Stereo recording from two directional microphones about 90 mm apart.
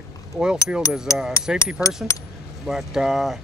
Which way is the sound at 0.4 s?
10° right (ahead or behind).